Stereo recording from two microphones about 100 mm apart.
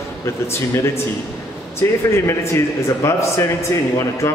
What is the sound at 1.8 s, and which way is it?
A man's voice, 25° left (ahead or behind).